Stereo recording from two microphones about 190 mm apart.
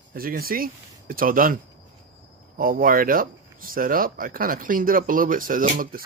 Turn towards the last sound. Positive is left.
turn(degrees=-45)  # may be behind; listen again after turning